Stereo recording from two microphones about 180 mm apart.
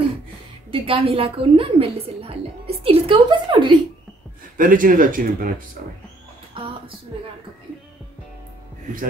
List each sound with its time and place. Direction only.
0.7 s a woman's voice: 30° right (ahead or behind)
4.6 s speech: 50° right (ahead or behind)
6.5 s a sound: 30° right (ahead or behind)